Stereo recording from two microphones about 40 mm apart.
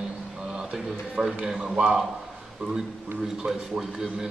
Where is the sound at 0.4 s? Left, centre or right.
Centre.